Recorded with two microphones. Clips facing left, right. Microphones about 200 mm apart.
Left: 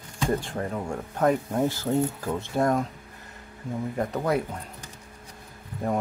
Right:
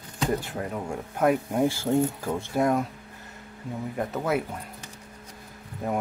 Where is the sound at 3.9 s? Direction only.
5° right (ahead or behind).